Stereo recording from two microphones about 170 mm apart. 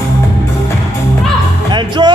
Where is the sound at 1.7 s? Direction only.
25° right (ahead or behind).